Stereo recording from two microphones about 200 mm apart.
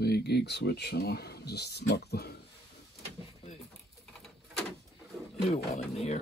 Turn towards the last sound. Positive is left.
turn(degrees=35)  # may be behind; listen again after turning